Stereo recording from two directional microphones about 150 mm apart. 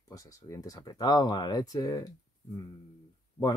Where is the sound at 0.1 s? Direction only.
20° left (ahead or behind).